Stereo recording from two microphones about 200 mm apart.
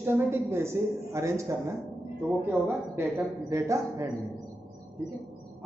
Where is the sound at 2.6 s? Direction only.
10° right (ahead or behind).